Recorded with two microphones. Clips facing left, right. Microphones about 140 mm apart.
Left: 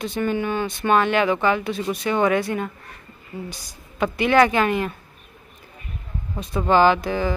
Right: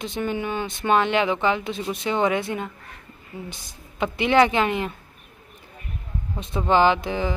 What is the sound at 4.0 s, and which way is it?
Speech, 20° right (ahead or behind).